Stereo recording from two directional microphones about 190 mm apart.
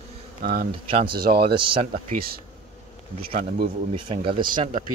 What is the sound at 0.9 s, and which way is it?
Speech, 30° right (ahead or behind).